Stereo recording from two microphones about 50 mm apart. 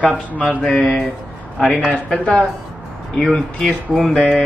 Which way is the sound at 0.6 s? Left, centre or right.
Left.